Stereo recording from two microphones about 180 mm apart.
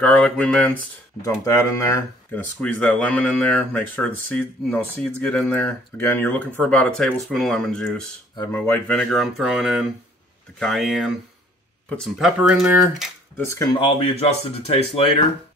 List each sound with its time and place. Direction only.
0.0 s speech: 5° left (ahead or behind)
1.4 s speech: 20° left (ahead or behind)
2.6 s speech: 5° left (ahead or behind)
13.4 s speech: 15° left (ahead or behind)
13.7 s speech: 30° left (ahead or behind)